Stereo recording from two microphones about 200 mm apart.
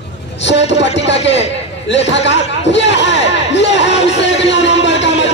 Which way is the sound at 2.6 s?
60° left (ahead or behind).